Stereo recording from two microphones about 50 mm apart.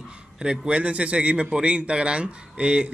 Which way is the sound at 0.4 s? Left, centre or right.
Centre.